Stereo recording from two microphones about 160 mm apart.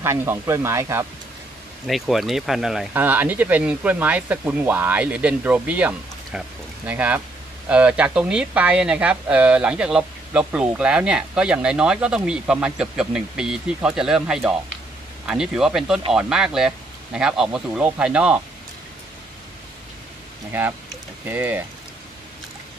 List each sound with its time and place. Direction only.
0.0 s speech: 15° right (ahead or behind)
1.9 s speech: centre (ahead or behind)
21.3 s speech: 10° right (ahead or behind)